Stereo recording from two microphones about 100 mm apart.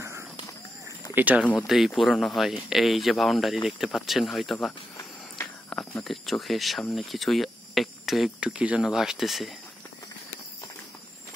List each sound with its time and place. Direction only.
1.1 s speech: 15° right (ahead or behind)
1.4 s speech: 15° left (ahead or behind)
2.0 s speech: centre (ahead or behind)
5.7 s a sound: 5° left (ahead or behind)
6.0 s speech: centre (ahead or behind)